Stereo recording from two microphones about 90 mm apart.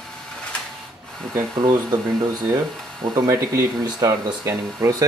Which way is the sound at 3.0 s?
40° right (ahead or behind).